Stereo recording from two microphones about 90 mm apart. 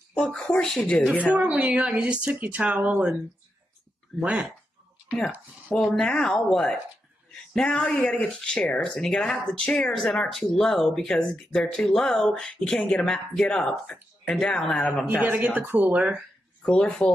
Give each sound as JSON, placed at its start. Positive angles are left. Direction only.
{"t": 0.1, "sound": "speech", "side_deg": 10}
{"t": 1.3, "sound": "speech", "side_deg": -15}
{"t": 4.2, "sound": "speech", "side_deg": -15}
{"t": 5.9, "sound": "speech", "side_deg": 5}
{"t": 15.0, "sound": "speech", "side_deg": -15}
{"t": 16.6, "sound": "speech", "side_deg": 10}